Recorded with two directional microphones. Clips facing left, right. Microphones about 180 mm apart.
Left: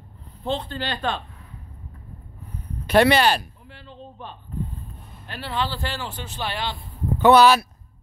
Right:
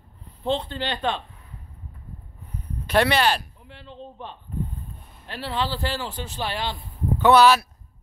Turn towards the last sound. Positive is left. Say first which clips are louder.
# left 1 dB
turn(degrees=0)  # may be behind; listen again after turning